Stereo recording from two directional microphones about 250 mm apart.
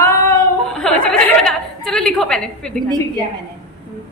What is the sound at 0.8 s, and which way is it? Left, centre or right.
A woman's voice, centre.